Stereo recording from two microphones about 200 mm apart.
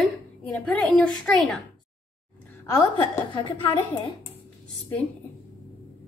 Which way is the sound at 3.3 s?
25° left (ahead or behind).